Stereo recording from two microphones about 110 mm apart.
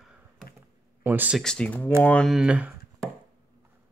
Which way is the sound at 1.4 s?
5° left (ahead or behind).